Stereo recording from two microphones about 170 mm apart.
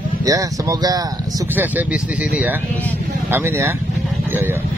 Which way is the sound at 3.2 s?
15° right (ahead or behind).